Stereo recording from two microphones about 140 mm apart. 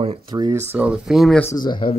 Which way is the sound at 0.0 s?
45° right (ahead or behind).